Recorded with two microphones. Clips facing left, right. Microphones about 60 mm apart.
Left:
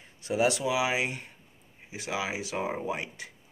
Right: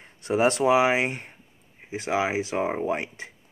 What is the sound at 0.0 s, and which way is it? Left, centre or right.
Speech, right.